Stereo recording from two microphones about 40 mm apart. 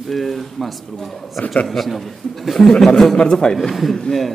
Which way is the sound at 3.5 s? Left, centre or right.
Centre.